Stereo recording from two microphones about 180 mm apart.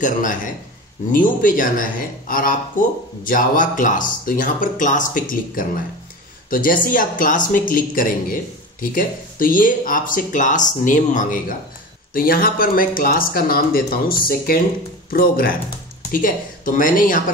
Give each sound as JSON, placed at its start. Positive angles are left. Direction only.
{"t": 0.0, "sound": "speech", "side_deg": 45}